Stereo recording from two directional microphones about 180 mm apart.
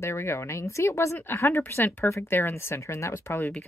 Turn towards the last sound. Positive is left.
turn(degrees=15)  # may be behind; listen again after turning